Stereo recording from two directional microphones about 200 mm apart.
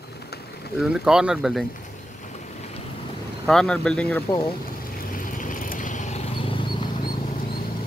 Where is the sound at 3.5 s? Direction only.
5° left (ahead or behind).